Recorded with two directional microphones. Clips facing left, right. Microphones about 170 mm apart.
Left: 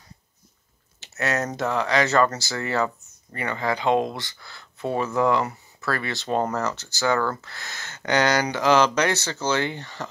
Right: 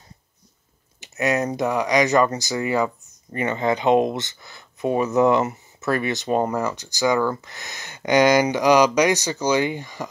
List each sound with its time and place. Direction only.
1.0 s speech: 15° right (ahead or behind)